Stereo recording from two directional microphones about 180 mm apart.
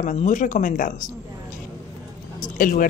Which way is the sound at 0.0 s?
40° left (ahead or behind).